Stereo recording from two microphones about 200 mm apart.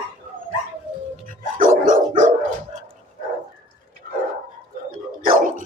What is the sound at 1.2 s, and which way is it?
Dog, 40° right (ahead or behind).